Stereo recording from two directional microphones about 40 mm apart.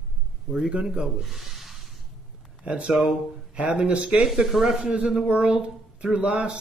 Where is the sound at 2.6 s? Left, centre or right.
Right.